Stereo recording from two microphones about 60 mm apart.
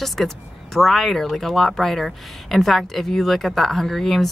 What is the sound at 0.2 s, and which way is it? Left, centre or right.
A woman's voice, centre.